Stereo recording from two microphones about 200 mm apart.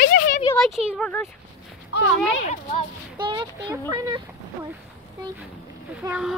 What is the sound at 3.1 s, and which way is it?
Speech, 20° right (ahead or behind).